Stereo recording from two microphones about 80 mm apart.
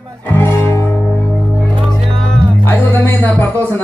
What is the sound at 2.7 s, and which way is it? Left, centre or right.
Music, left.